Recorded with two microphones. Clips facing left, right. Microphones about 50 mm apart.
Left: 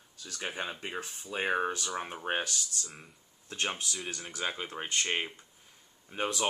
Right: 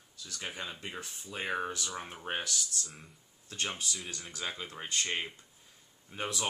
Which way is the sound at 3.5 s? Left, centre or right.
Left.